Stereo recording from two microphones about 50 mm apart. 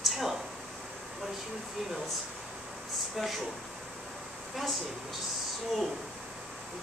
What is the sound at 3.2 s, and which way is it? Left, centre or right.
Speech, centre.